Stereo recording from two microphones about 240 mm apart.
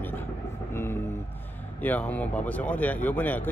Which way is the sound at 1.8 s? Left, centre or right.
Centre.